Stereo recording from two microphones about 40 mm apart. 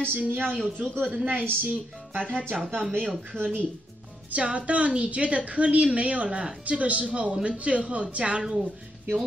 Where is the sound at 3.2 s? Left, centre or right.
Right.